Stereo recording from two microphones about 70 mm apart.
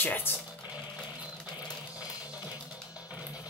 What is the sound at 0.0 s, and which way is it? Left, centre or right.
Speech, left.